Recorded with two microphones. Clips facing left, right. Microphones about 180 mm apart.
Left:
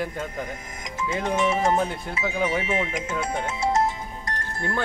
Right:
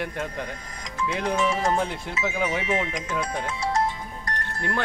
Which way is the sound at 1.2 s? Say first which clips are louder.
Left 2 dB; 25° left (ahead or behind).